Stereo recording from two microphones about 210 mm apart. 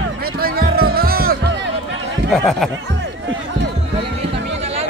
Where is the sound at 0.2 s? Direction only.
45° right (ahead or behind).